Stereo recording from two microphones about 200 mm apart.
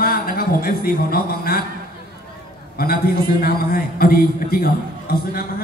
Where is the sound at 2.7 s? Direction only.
50° left (ahead or behind).